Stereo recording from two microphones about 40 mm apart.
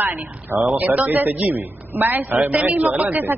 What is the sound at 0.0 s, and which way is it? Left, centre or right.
A woman's voice, right.